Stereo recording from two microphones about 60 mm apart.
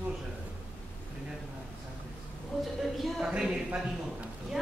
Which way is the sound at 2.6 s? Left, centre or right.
Centre.